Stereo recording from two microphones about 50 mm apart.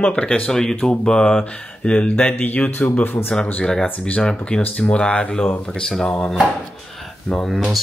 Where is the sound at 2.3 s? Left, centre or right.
Left.